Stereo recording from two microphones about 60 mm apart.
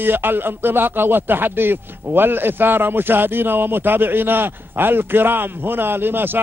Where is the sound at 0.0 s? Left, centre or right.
Right.